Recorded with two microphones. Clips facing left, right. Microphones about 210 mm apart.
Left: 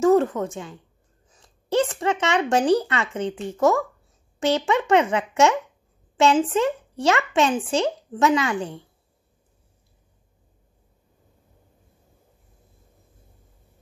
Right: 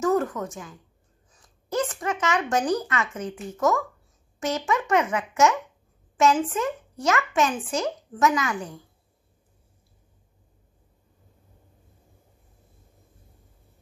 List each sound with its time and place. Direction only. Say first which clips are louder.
0.0 s speech: left 6 dB; 25° left (ahead or behind)